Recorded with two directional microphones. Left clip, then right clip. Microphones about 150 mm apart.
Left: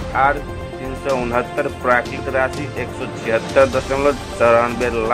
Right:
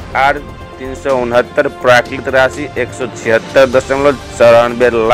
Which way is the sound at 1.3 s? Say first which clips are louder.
Right 8 dB; 35° right (ahead or behind).